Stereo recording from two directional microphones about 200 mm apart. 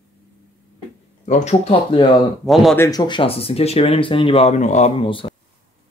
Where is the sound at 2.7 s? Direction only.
15° left (ahead or behind).